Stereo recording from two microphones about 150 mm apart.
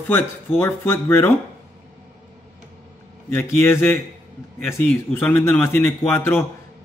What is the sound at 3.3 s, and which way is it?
A man's voice, 15° left (ahead or behind).